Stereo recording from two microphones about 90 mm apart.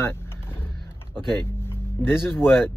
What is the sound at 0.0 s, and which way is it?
Vehicle, 25° left (ahead or behind).